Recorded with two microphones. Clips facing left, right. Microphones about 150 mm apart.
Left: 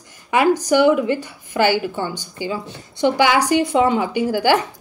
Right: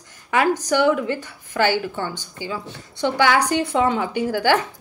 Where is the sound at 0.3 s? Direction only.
10° left (ahead or behind).